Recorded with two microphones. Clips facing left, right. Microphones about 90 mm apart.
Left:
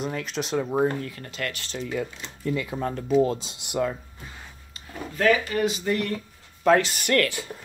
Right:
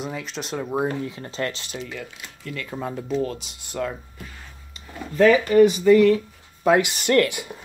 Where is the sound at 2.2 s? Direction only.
20° left (ahead or behind).